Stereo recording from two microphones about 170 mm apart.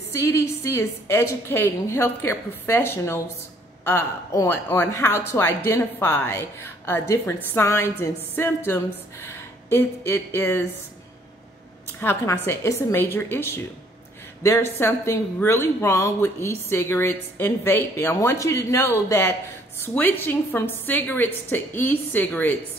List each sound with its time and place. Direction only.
0.1 s speech: 15° left (ahead or behind)
12.0 s speech: 15° left (ahead or behind)